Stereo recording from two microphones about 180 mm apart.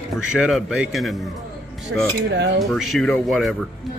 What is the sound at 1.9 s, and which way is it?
Cutlery, 90° right.